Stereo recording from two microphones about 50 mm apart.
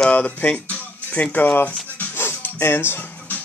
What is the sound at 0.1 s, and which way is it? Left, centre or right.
Speech, left.